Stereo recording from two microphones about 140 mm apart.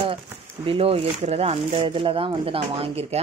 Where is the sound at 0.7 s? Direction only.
40° right (ahead or behind).